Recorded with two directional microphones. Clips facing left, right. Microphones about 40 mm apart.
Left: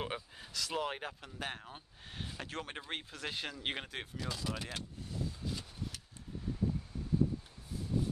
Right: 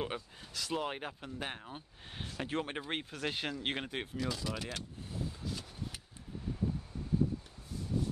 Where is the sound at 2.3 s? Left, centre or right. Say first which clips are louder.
Right 7 dB; centre.